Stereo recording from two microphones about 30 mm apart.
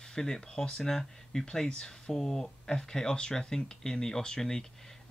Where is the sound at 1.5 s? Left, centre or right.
Left.